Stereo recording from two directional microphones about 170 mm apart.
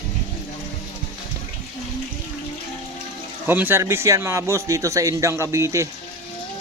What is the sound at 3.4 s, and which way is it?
A man's voice, 10° right (ahead or behind).